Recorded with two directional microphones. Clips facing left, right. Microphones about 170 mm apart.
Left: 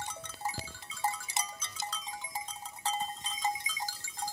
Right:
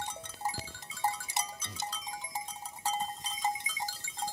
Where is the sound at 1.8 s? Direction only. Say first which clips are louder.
Even; 10° right (ahead or behind).